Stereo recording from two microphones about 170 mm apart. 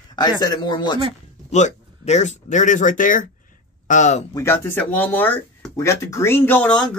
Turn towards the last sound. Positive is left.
turn(degrees=5)  # may be behind; listen again after turning